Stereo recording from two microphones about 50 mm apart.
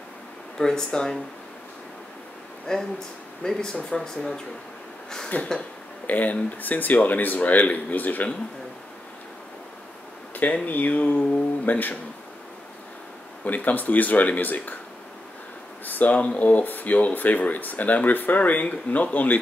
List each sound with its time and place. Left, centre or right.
0.6 s speech: centre
2.7 s speech: centre
5.3 s speech: left
10.3 s speech: left
13.4 s speech: left
15.8 s speech: left